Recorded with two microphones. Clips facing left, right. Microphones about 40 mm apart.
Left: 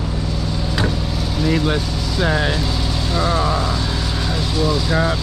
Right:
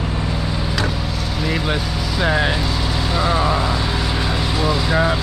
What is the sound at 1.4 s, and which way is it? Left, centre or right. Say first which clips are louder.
Speech: left 3 dB; centre.